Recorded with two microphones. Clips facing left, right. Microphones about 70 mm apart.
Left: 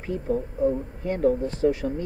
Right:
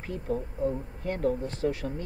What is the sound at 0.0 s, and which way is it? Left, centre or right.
Speech, centre.